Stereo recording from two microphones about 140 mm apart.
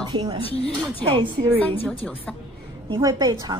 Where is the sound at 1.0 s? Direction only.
40° right (ahead or behind).